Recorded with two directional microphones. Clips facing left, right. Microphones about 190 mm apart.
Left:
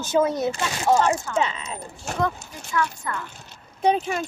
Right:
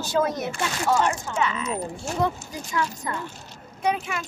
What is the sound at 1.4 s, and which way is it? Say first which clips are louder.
Speech: right 1 dB; 30° left (ahead or behind).